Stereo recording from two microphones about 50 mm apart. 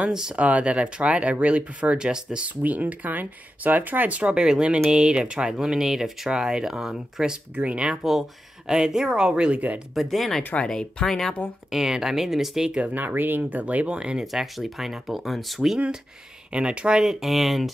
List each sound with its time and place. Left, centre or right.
0.0 s speech: centre
2.6 s speech: right
4.3 s speech: centre
7.5 s speech: right
8.0 s speech: centre
9.9 s speech: centre
10.5 s speech: centre
11.1 s speech: centre
11.7 s speech: centre
12.9 s speech: right
13.9 s speech: centre
14.2 s speech: centre
16.5 s speech: right
17.0 s speech: centre